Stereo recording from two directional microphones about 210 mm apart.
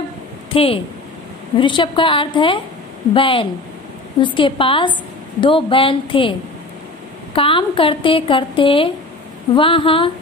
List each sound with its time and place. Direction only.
0.5 s a woman's voice: 25° left (ahead or behind)
7.3 s a woman's voice: 25° left (ahead or behind)